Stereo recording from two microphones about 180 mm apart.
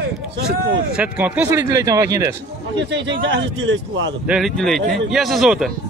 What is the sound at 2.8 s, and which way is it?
Speech, 85° right.